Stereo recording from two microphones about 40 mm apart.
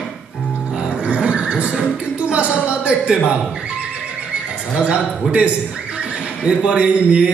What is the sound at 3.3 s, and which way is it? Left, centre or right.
Neigh, right.